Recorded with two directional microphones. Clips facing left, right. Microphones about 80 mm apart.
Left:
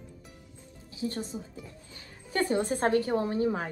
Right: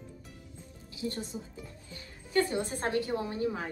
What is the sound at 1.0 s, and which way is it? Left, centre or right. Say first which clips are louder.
Speech: left 3 dB; left.